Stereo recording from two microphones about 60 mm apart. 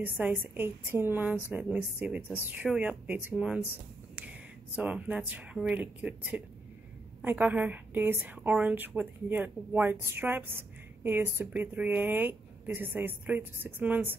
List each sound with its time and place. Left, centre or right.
0.0 s a woman's voice: right
3.3 s speech: centre
4.1 s a sound: right
5.7 s a woman's voice: right